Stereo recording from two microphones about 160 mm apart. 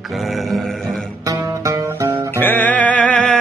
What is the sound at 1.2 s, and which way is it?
Music, 20° right (ahead or behind).